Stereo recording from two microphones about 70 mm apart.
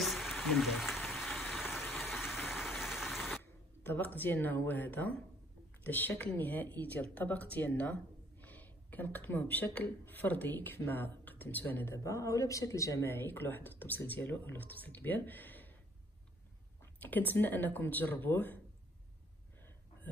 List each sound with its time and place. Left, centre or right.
0.0 s a sound: centre
3.8 s a woman's voice: left
11.9 s a woman's voice: left
13.1 s speech: left
17.0 s speech: left